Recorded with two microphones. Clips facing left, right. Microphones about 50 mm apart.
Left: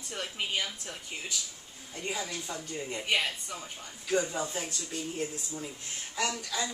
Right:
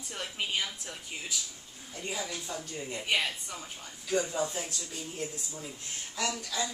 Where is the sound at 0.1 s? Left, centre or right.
Centre.